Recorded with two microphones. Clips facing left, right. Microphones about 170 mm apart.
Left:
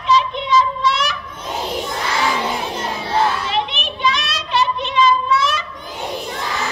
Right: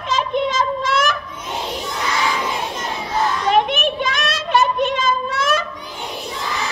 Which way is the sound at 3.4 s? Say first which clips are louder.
Right 6 dB; 50° right (ahead or behind).